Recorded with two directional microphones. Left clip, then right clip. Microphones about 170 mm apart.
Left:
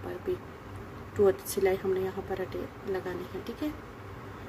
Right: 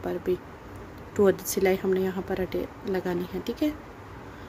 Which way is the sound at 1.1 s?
60° right (ahead or behind).